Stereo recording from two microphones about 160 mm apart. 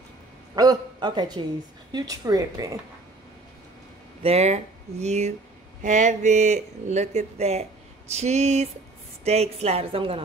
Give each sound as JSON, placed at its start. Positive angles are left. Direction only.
{"t": 0.6, "sound": "speech", "side_deg": -25}
{"t": 4.2, "sound": "a woman's voice", "side_deg": -40}